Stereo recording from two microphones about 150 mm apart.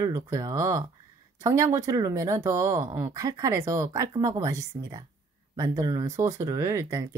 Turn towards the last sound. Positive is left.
turn(degrees=-20)  # may be behind; listen again after turning